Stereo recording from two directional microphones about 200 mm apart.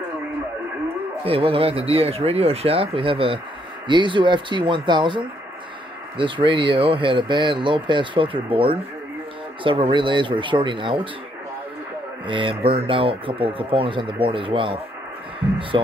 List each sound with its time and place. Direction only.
1.2 s speech: 30° right (ahead or behind)
12.3 s speech: 25° right (ahead or behind)